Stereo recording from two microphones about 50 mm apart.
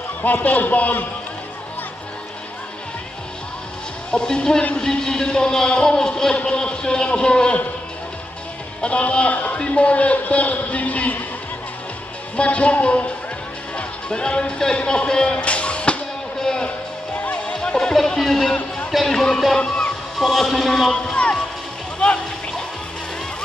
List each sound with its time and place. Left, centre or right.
0.2 s a man's voice: left
4.1 s speech: centre
8.8 s a man's voice: left
12.4 s a man's voice: left
16.3 s a sound: centre
17.1 s music: left
17.5 s music: centre
17.9 s speech: centre
19.6 s music: left
20.2 s speech: centre
20.9 s music: left